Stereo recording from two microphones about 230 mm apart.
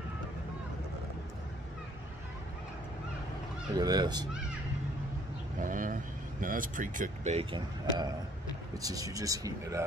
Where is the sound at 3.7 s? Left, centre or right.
Centre.